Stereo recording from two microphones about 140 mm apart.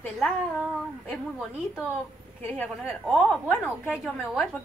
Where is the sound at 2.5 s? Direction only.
10° left (ahead or behind).